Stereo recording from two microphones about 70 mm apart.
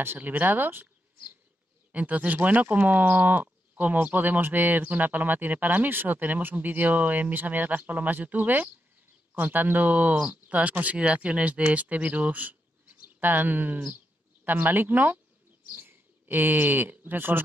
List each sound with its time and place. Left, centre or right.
0.0 s speech: right